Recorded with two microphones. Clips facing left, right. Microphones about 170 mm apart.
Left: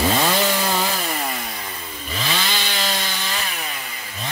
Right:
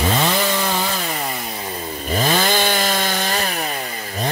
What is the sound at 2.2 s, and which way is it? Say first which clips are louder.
Chainsaw: right 8 dB; 50° right (ahead or behind).